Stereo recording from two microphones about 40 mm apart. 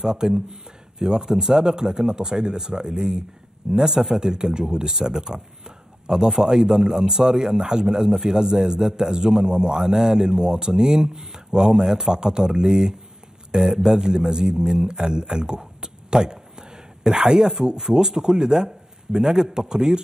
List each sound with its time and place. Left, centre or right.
0.0 s a man's voice: centre